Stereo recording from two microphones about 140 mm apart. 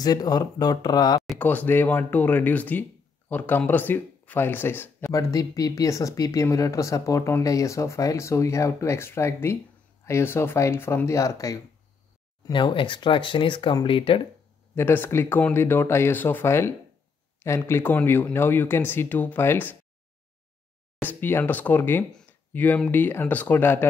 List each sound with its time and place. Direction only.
0.0 s speech: 30° left (ahead or behind)
1.4 s speech: 10° left (ahead or behind)
12.4 s speech: 35° left (ahead or behind)
14.8 s speech: 15° left (ahead or behind)
21.0 s speech: 15° left (ahead or behind)